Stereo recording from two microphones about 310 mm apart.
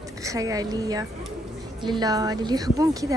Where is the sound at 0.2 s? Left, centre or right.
Centre.